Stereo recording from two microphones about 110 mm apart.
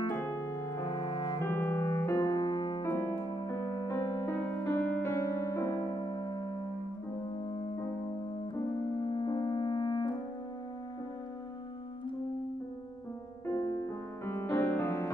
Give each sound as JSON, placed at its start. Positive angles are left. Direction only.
{"t": 0.7, "sound": "music", "side_deg": 40}
{"t": 1.4, "sound": "music", "side_deg": 20}
{"t": 1.8, "sound": "music", "side_deg": 35}
{"t": 2.8, "sound": "music", "side_deg": 20}
{"t": 3.3, "sound": "music", "side_deg": 40}
{"t": 4.3, "sound": "music", "side_deg": 20}
{"t": 9.0, "sound": "french horn", "side_deg": 45}
{"t": 13.5, "sound": "music", "side_deg": 30}